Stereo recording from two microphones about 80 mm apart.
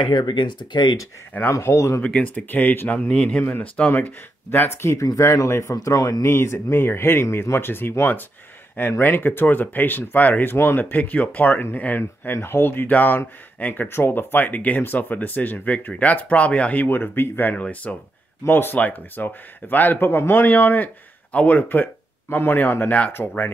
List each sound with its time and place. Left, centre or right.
0.0 s speech: left
1.5 s speech: left
2.0 s speech: centre
3.1 s speech: centre; by 6.2 s left
6.2 s speech: left